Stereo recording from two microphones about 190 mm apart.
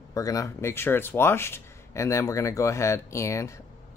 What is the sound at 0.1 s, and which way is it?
Speech, 15° left (ahead or behind).